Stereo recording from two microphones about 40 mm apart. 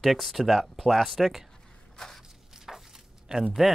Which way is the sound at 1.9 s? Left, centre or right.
Centre.